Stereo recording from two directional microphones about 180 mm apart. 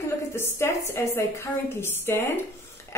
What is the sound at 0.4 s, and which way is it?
A woman's voice, 15° left (ahead or behind).